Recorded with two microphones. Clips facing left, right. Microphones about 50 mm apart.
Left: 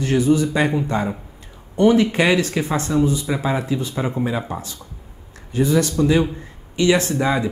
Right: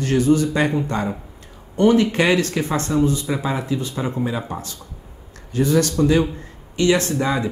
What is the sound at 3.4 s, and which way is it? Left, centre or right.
Speech, left.